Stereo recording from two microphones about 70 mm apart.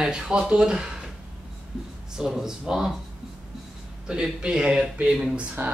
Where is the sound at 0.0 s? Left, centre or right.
Centre.